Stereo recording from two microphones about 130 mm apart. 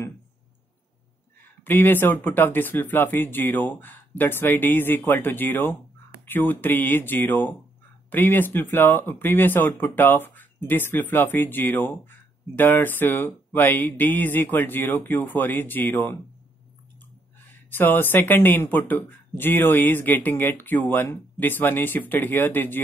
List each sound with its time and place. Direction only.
1.6 s speech: 15° left (ahead or behind)
17.5 s speech: 15° left (ahead or behind)